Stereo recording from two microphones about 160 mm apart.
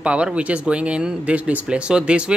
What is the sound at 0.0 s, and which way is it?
Speech, 5° right (ahead or behind).